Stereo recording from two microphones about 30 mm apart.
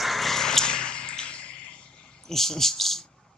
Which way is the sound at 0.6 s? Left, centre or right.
Left.